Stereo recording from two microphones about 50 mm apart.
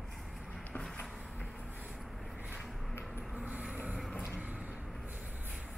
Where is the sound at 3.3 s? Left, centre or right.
Right.